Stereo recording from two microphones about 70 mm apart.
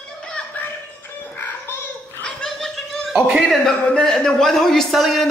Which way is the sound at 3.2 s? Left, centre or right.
Centre.